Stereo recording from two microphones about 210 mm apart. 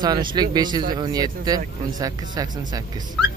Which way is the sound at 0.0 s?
20° right (ahead or behind).